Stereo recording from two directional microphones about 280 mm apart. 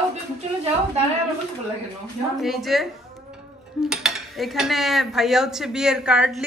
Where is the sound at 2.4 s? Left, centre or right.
Centre.